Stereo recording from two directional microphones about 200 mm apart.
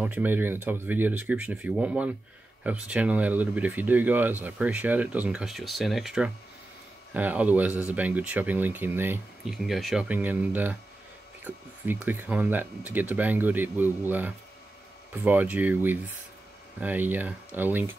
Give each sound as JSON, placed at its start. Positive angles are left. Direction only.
{"t": 0.0, "sound": "speech", "side_deg": -10}